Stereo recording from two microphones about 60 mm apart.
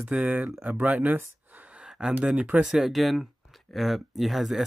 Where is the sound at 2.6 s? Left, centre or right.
Centre.